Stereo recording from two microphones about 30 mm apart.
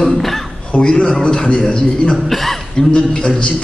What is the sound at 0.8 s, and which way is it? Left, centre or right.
A man's voice, left.